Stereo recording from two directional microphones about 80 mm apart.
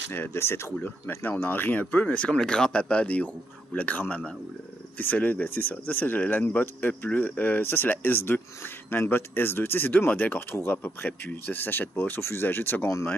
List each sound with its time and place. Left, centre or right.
0.1 s speech: left